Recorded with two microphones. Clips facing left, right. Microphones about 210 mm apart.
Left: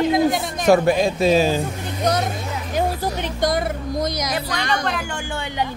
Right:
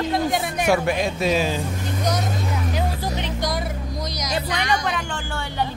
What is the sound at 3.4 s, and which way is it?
Music, 50° left (ahead or behind).